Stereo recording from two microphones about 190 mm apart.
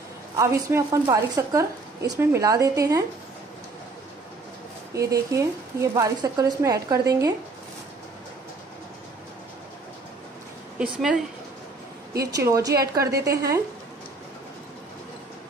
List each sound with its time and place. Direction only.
0.4 s a woman's voice: 15° right (ahead or behind)
4.9 s a woman's voice: 15° right (ahead or behind)
10.8 s a woman's voice: centre (ahead or behind)
12.2 s a woman's voice: 20° right (ahead or behind)